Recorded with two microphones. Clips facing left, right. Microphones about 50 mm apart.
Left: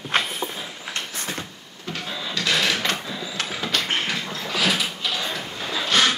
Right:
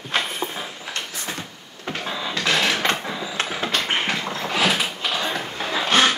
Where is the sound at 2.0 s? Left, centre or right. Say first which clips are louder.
Right 2 dB; right.